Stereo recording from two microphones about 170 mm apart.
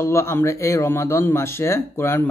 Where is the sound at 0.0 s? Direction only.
15° left (ahead or behind).